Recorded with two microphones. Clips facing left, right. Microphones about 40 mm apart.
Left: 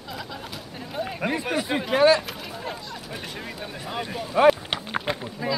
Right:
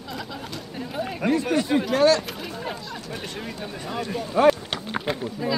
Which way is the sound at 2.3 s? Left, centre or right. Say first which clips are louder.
Right 2 dB; centre.